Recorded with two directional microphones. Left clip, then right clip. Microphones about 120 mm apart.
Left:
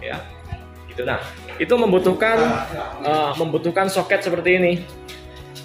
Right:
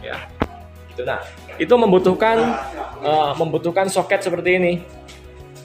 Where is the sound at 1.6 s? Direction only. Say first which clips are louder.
Right 3 dB; 35° right (ahead or behind).